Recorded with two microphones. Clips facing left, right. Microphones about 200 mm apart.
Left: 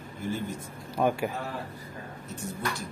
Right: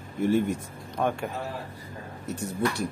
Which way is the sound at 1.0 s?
5° left (ahead or behind).